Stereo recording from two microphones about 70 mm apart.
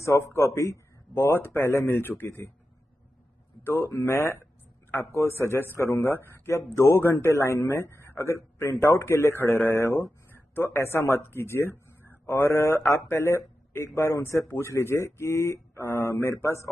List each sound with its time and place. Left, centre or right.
0.4 s a man's voice: left
3.6 s a man's voice: left